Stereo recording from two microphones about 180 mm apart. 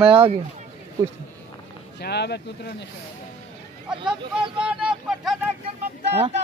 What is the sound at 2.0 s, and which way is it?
Speech, 65° left (ahead or behind).